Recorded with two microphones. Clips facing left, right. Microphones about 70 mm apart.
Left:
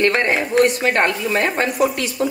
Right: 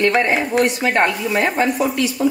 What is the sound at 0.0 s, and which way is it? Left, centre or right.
Speech, left.